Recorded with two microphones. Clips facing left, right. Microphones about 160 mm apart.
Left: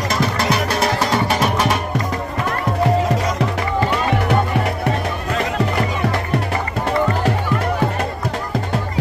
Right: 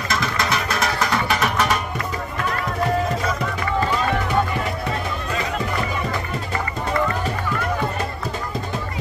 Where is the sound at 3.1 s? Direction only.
75° left (ahead or behind).